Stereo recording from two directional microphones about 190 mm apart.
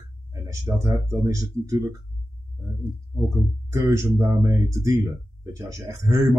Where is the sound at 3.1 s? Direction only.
15° right (ahead or behind).